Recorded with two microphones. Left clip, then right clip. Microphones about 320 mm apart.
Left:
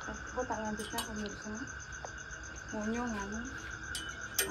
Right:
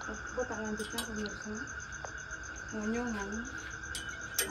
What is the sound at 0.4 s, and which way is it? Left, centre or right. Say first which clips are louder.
Speech: left 1 dB; centre.